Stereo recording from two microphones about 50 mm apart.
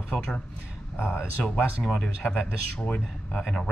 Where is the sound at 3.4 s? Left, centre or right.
Centre.